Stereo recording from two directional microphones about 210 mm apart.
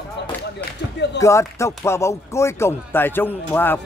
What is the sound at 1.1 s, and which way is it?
Speech, 15° left (ahead or behind).